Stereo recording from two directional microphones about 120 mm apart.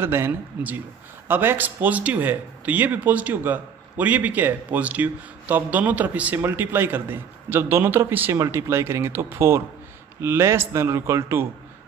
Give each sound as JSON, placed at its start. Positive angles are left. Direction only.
{"t": 0.0, "sound": "speech", "side_deg": -20}